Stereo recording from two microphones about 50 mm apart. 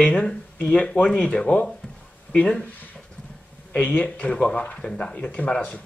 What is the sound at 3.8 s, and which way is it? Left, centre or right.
Speech, left.